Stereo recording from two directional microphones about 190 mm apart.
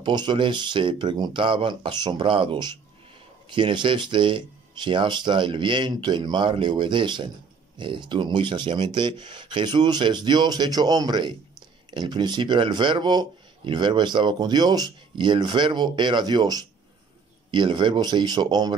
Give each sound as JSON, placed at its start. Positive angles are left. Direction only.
{"t": 0.0, "sound": "speech", "side_deg": -25}